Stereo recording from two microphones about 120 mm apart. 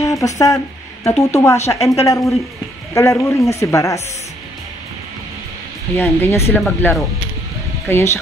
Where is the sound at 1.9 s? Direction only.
25° left (ahead or behind).